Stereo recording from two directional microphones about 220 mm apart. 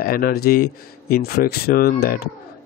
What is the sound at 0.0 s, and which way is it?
Speech, 40° left (ahead or behind).